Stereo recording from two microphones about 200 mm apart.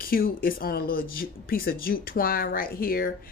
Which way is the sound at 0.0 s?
45° left (ahead or behind).